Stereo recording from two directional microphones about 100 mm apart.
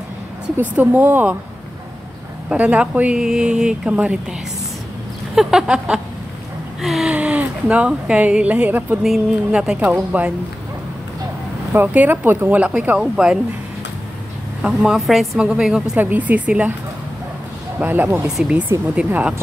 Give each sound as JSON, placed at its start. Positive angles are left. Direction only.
{"t": 0.6, "sound": "speech", "side_deg": -15}
{"t": 2.5, "sound": "a woman's voice", "side_deg": -15}
{"t": 7.2, "sound": "speech", "side_deg": -15}
{"t": 9.0, "sound": "speech", "side_deg": -5}
{"t": 11.7, "sound": "speech", "side_deg": -20}
{"t": 14.6, "sound": "a woman's voice", "side_deg": -5}
{"t": 16.0, "sound": "speech", "side_deg": -15}
{"t": 17.7, "sound": "speech", "side_deg": -20}
{"t": 18.2, "sound": "speech", "side_deg": -10}